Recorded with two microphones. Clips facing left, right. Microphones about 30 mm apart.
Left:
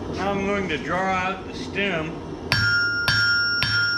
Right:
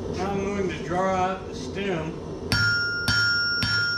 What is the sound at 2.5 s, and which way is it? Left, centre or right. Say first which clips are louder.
Music: left 2 dB; left.